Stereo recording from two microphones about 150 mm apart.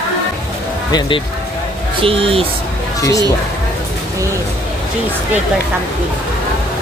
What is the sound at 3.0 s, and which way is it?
Speech, 20° left (ahead or behind).